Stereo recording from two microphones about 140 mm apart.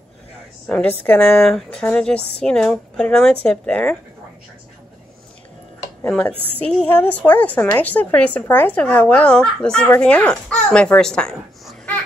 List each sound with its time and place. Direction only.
0.7 s a woman's voice: 5° left (ahead or behind)
6.6 s a woman's voice: 10° left (ahead or behind)